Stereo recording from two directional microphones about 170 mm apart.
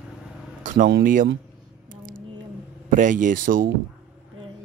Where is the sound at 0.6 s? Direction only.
50° right (ahead or behind).